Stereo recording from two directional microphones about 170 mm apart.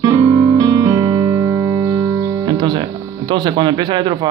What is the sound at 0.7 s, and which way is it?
Music, 20° right (ahead or behind).